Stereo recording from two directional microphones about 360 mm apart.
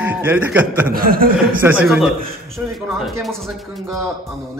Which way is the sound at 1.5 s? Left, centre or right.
Centre.